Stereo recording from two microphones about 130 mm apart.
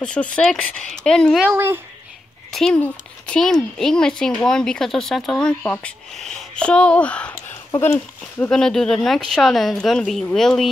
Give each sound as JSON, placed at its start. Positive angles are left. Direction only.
{"t": 0.0, "sound": "speech", "side_deg": 10}
{"t": 1.5, "sound": "speech", "side_deg": -15}
{"t": 2.5, "sound": "speech", "side_deg": 5}
{"t": 8.5, "sound": "speech", "side_deg": 5}